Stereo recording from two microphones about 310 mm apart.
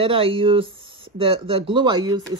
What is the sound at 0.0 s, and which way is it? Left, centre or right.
Speech, centre.